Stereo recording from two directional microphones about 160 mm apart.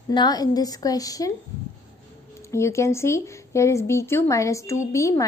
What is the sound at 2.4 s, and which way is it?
A woman's voice, 15° left (ahead or behind).